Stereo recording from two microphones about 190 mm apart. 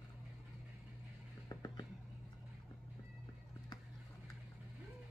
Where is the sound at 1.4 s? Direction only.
20° left (ahead or behind).